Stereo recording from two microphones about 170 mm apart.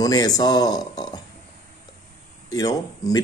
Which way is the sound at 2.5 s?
20° left (ahead or behind).